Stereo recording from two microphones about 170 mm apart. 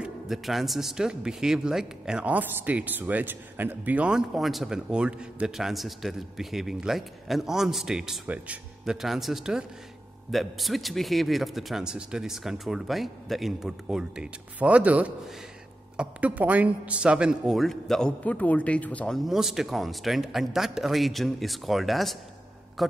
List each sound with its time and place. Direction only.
0.0 s a man's voice: centre (ahead or behind)